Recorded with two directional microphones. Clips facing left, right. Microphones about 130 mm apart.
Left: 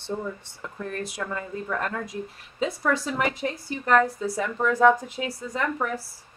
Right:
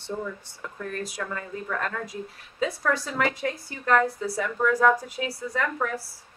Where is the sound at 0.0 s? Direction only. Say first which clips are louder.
Left 1 dB; 25° left (ahead or behind).